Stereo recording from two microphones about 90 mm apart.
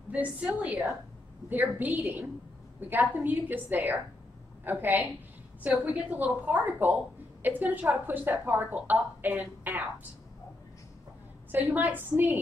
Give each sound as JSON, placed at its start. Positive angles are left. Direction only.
{"t": 0.1, "sound": "a woman's voice", "side_deg": -15}
{"t": 11.5, "sound": "a woman's voice", "side_deg": -20}